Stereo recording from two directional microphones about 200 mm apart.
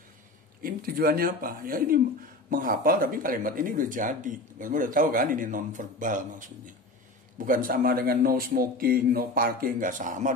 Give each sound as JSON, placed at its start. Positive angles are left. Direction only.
{"t": 0.6, "sound": "speech", "side_deg": -45}